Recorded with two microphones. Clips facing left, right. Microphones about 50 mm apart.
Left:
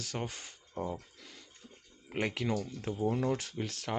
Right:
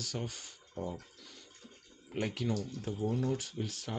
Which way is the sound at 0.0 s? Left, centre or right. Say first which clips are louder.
Left 2 dB; left.